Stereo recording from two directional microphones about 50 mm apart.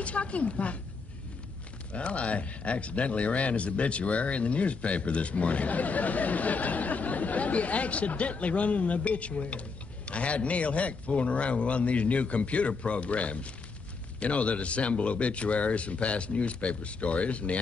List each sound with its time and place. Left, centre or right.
0.0 s speech: left
1.9 s speech: left